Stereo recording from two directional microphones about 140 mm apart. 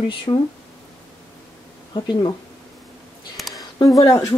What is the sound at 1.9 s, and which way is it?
Speech, 35° left (ahead or behind).